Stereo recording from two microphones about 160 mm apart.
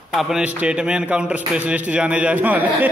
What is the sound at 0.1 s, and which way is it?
A man's voice, centre (ahead or behind).